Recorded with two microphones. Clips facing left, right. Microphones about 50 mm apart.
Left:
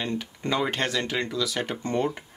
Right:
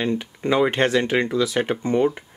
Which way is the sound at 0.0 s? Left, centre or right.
Centre.